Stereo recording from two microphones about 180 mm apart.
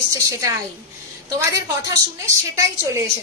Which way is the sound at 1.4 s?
15° right (ahead or behind).